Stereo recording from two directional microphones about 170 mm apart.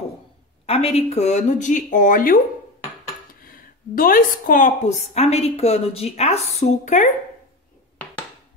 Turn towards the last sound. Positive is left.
turn(degrees=45)  # may be behind; listen again after turning